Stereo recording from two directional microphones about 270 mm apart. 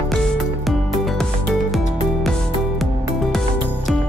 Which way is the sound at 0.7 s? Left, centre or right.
Centre.